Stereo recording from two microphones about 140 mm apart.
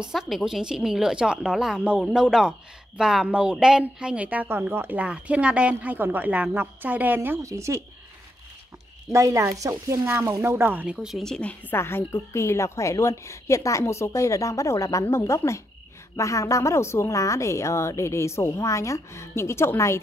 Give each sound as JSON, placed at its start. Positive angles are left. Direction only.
{"t": 0.0, "sound": "a woman's voice", "side_deg": -5}
{"t": 9.1, "sound": "speech", "side_deg": -20}
{"t": 11.7, "sound": "speech", "side_deg": 20}